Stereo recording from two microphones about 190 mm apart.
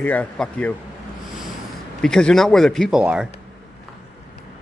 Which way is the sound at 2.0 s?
5° left (ahead or behind).